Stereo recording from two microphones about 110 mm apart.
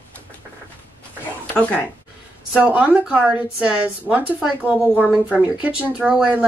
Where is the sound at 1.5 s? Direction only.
15° left (ahead or behind).